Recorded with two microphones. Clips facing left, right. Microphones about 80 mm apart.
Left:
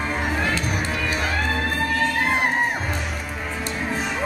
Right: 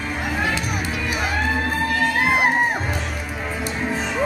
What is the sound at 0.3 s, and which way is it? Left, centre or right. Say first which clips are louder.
Music: even; centre.